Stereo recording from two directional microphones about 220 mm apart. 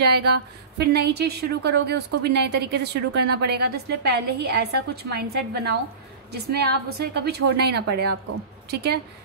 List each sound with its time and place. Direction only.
0.0 s a woman's voice: 45° right (ahead or behind)